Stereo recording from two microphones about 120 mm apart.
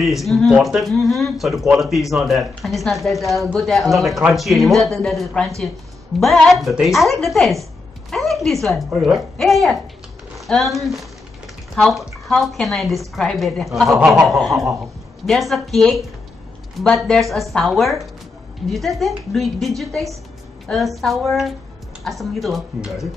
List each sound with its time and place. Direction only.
0.0 s a woman's voice: centre (ahead or behind)